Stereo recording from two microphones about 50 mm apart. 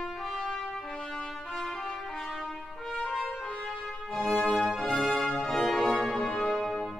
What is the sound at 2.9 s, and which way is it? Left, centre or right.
Brass instrument, centre.